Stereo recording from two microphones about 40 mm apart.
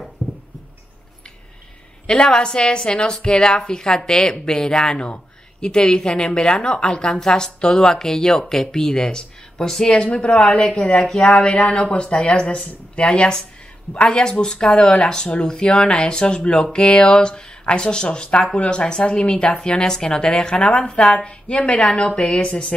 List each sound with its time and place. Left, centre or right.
0.2 s a sound: centre
2.0 s a woman's voice: left
10.0 s a woman's voice: left
11.1 s speech: centre
11.3 s a woman's voice: left